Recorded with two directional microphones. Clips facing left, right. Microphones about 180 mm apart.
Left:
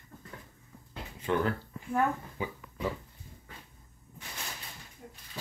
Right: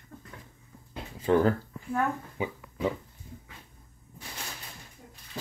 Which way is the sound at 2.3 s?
20° right (ahead or behind).